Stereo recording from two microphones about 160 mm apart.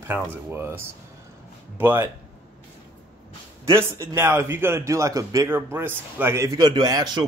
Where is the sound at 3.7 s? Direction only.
15° right (ahead or behind).